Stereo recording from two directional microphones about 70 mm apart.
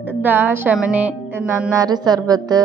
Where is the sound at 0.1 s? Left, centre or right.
Right.